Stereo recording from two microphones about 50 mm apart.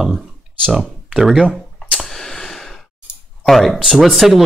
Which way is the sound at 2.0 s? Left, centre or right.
Centre.